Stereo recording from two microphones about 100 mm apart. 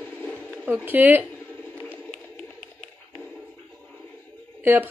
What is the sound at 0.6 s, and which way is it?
Speech, 20° right (ahead or behind).